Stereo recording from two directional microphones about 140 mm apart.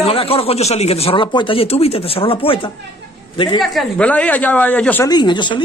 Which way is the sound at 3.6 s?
Centre (ahead or behind).